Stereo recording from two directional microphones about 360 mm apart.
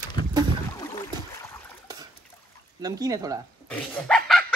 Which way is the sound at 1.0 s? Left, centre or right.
Centre.